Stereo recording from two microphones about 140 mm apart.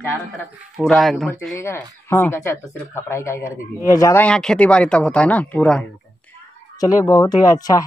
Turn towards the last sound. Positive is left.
turn(degrees=25)  # may be behind; listen again after turning